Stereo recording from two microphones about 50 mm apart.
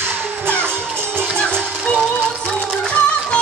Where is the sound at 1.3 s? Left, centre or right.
Centre.